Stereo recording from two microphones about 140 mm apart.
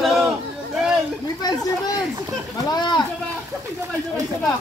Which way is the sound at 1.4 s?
25° left (ahead or behind).